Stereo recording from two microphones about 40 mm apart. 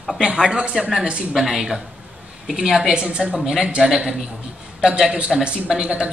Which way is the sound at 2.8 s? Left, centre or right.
Right.